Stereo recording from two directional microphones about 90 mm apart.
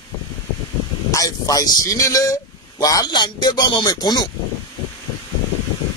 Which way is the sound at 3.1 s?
55° left (ahead or behind).